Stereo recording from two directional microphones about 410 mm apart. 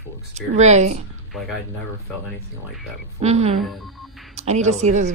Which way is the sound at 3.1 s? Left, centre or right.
Centre.